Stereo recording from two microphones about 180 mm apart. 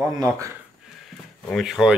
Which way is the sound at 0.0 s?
15° right (ahead or behind).